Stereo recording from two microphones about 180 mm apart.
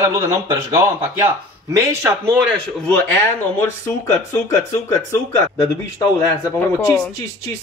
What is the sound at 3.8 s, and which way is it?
Speech, 15° left (ahead or behind).